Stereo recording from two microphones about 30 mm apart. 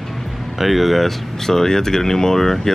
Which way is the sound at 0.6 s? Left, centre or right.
Centre.